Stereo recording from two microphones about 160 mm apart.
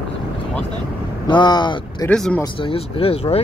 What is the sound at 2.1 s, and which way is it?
Speech, 5° left (ahead or behind).